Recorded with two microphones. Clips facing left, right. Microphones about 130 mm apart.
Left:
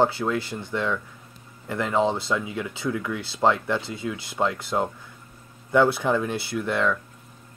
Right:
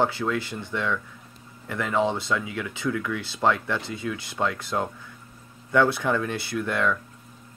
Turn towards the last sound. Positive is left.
turn(degrees=20)  # may be behind; listen again after turning